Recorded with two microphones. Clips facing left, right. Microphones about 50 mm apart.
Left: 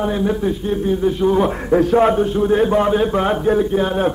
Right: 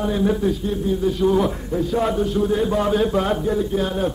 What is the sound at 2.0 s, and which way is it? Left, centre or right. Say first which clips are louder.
Speech: left 5 dB; left.